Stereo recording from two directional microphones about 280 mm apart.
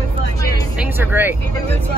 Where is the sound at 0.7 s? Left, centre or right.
Centre.